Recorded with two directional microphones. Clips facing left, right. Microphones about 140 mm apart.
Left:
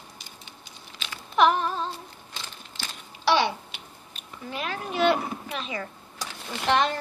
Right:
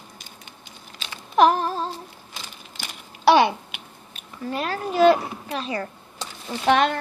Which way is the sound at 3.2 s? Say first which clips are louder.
Right 6 dB; 55° right (ahead or behind).